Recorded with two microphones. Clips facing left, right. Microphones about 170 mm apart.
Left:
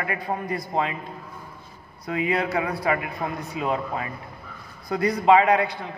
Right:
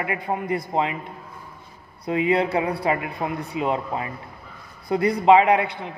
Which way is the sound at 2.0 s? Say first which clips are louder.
Right 4 dB; 25° right (ahead or behind).